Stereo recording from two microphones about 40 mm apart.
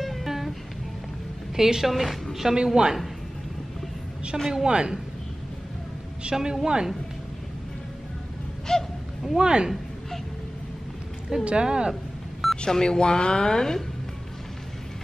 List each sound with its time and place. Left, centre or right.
0.0 s music: centre
1.6 s a woman's voice: centre
1.9 s a woman's voice: centre
2.5 s speech: right
4.3 s a woman's voice: centre
4.6 s speech: right
6.3 s a woman's voice: centre
8.7 s gasp: centre
9.4 s speech: right
11.4 s speech: right
11.9 s a sound: centre
12.5 s speech: centre